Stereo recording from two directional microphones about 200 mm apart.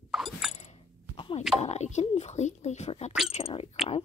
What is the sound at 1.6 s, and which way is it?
Speech, 35° left (ahead or behind).